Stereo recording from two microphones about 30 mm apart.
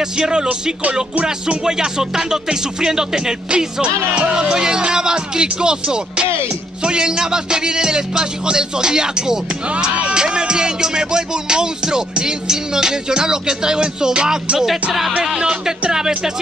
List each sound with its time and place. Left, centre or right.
0.0 s music: right
3.4 s music: right
14.7 s music: centre